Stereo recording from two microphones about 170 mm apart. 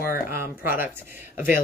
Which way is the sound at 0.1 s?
15° right (ahead or behind).